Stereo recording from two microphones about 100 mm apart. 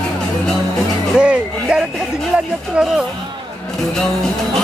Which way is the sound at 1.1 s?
10° right (ahead or behind).